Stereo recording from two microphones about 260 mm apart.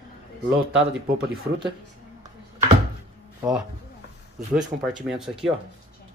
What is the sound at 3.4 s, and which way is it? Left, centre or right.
Speech, centre.